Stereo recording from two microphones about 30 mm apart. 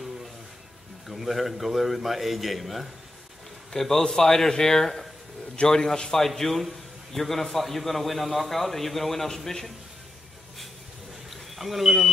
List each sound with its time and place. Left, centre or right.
1.0 s a man's voice: centre
4.0 s a man's voice: centre
6.1 s a man's voice: centre
11.2 s smoke detector: centre